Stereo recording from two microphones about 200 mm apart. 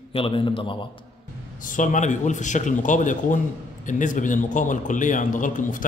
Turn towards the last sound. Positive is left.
turn(degrees=40)  # may be behind; listen again after turning